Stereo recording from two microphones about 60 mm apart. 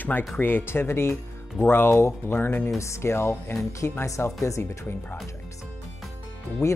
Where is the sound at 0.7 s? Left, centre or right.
Left.